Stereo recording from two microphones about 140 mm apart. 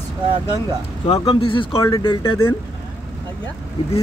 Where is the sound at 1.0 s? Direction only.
40° left (ahead or behind).